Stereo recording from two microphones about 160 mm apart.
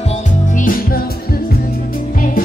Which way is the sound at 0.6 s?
60° left (ahead or behind).